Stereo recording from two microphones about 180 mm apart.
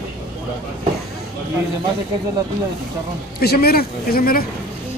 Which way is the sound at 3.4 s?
60° left (ahead or behind).